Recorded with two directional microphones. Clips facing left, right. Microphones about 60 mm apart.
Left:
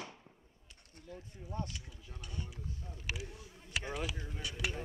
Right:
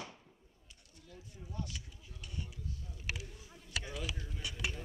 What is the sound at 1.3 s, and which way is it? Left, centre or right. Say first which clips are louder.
Speech: left 2 dB; left.